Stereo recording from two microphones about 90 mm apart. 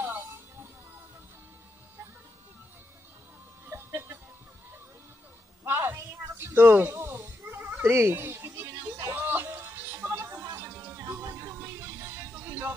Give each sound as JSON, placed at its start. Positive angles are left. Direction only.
{"t": 0.0, "sound": "music", "side_deg": -30}
{"t": 3.6, "sound": "music", "side_deg": -25}
{"t": 5.6, "sound": "a sound", "side_deg": -25}